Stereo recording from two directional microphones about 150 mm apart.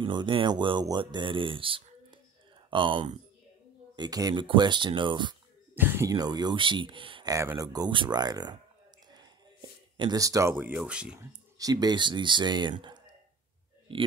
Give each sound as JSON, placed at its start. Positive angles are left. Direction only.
{"t": 0.0, "sound": "speech", "side_deg": -30}
{"t": 5.8, "sound": "speech", "side_deg": -15}
{"t": 7.3, "sound": "speech", "side_deg": -20}
{"t": 9.9, "sound": "speech", "side_deg": -25}
{"t": 11.1, "sound": "speech", "side_deg": -25}
{"t": 13.9, "sound": "speech", "side_deg": -35}